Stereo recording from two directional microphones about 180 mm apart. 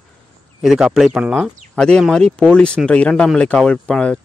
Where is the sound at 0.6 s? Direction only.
Centre (ahead or behind).